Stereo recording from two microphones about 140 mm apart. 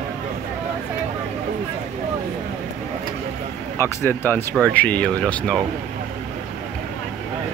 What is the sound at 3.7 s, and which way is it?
Speech, 15° left (ahead or behind).